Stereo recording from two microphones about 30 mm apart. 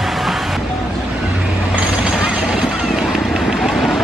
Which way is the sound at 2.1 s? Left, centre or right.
Right.